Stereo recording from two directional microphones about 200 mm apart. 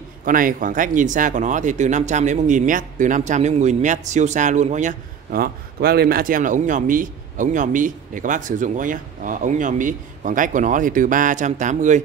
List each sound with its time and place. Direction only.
0.2 s speech: 45° right (ahead or behind)